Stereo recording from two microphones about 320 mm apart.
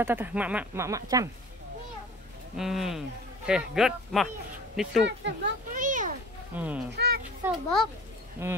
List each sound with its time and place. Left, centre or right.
0.0 s speech: centre
2.5 s speech: centre
5.0 s a sound: right
6.5 s speech: centre